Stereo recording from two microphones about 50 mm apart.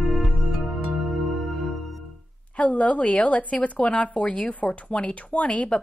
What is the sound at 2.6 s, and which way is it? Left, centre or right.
Speech, left.